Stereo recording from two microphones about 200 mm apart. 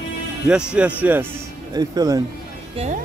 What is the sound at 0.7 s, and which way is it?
Speech, 10° right (ahead or behind).